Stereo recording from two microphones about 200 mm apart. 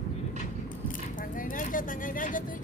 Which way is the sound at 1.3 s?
40° left (ahead or behind).